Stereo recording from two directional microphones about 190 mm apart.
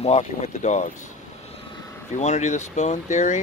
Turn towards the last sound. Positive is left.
turn(degrees=40)  # may be behind; listen again after turning